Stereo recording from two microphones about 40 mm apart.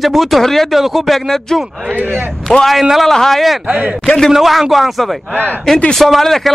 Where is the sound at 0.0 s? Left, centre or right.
Centre.